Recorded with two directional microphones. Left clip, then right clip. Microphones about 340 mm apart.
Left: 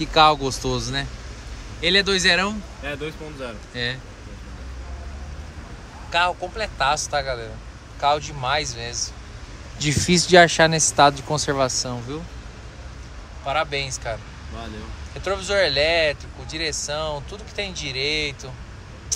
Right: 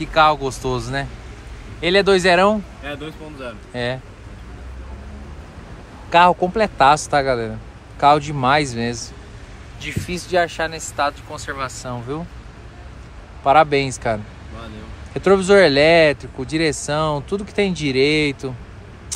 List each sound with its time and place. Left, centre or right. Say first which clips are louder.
0.0 s speech: right 1 dB; centre
6.0 s speech: right 8 dB; centre
9.8 s speech: left 7 dB; centre
13.5 s speech: right 10 dB; centre
15.1 s speech: right 9 dB; centre